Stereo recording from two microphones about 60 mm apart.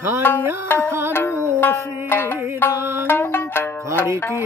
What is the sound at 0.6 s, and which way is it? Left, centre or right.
Music, left.